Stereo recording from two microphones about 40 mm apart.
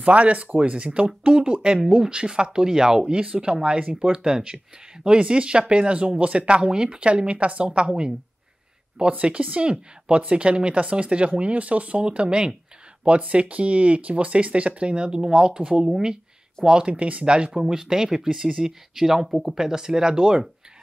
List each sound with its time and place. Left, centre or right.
0.0 s speech: right; by 3.1 s centre
3.1 s speech: right
9.0 s speech: right
16.9 s speech: right